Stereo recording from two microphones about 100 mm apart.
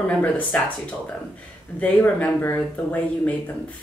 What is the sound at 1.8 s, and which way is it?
Speech, 15° left (ahead or behind).